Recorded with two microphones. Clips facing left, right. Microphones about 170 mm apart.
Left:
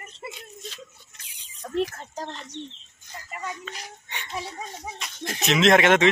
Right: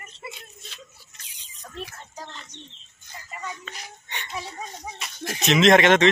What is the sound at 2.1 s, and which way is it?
Bird, 35° left (ahead or behind).